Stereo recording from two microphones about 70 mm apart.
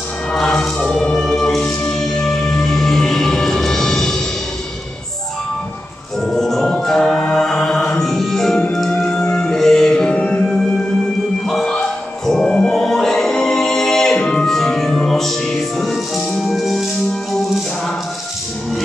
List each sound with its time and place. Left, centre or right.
0.3 s music: centre
6.2 s music: centre
11.4 s a sound: centre
11.7 s music: centre